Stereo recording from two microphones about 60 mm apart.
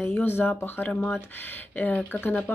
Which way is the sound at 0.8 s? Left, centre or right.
Left.